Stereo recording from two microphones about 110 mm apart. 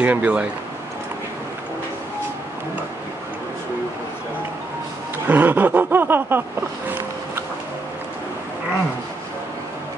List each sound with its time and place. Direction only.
0.0 s speech: 15° right (ahead or behind)
5.2 s snicker: 15° right (ahead or behind)